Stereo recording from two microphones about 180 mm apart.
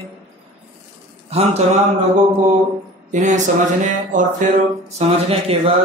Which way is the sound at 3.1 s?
45° right (ahead or behind).